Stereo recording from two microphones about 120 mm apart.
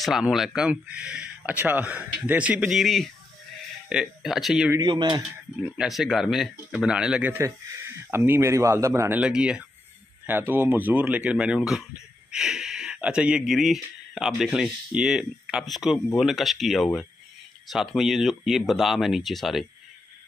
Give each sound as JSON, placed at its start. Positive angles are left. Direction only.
{"t": 0.0, "sound": "speech", "side_deg": -5}
{"t": 4.7, "sound": "speech", "side_deg": -40}
{"t": 5.8, "sound": "speech", "side_deg": 0}
{"t": 7.3, "sound": "speech", "side_deg": -25}
{"t": 9.2, "sound": "speech", "side_deg": -10}